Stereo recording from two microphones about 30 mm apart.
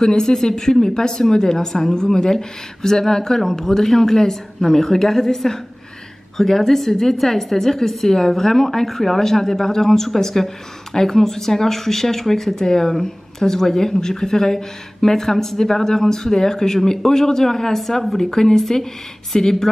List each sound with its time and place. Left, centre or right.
0.0 s a woman's voice: left